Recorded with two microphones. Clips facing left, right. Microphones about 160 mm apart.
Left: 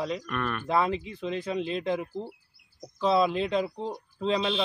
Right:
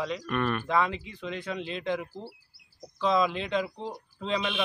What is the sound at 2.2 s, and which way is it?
Speech, centre (ahead or behind).